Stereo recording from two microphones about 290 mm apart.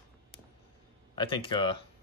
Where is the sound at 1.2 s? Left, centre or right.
Centre.